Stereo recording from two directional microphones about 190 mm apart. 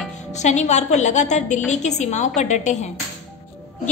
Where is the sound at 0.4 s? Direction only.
40° left (ahead or behind).